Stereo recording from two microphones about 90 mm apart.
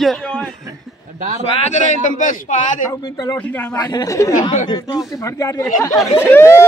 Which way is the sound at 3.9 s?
50° left (ahead or behind).